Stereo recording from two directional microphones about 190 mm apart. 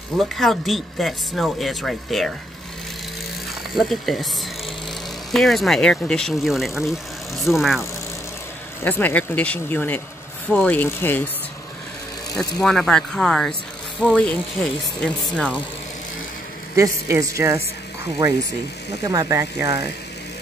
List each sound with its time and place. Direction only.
0.2 s speech: centre (ahead or behind)
3.7 s speech: centre (ahead or behind)
5.3 s speech: centre (ahead or behind)
8.8 s speech: 10° left (ahead or behind)
12.4 s speech: 5° left (ahead or behind)
16.7 s a woman's voice: 15° right (ahead or behind)